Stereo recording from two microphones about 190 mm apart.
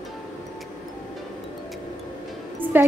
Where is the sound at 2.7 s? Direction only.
10° right (ahead or behind).